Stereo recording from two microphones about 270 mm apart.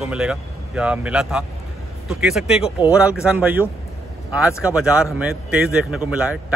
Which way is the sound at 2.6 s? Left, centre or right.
Centre.